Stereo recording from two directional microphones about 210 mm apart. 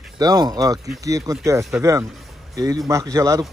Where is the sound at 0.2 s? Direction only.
20° right (ahead or behind).